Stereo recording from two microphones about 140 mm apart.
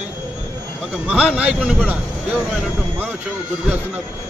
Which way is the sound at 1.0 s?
10° right (ahead or behind).